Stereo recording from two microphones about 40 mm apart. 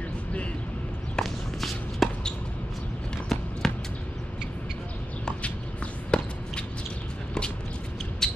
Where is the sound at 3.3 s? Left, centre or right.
Centre.